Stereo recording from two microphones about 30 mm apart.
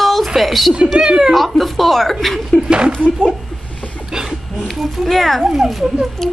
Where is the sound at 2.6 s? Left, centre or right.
Right.